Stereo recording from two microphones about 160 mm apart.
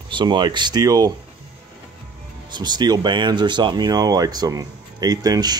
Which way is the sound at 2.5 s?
25° right (ahead or behind).